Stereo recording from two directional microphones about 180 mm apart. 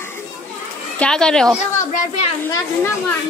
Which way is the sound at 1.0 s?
5° left (ahead or behind).